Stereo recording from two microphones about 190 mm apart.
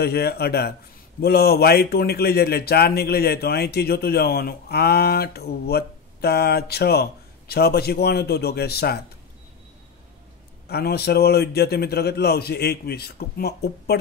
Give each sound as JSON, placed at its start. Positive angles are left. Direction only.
{"t": 0.0, "sound": "speech", "side_deg": 55}
{"t": 10.7, "sound": "speech", "side_deg": 55}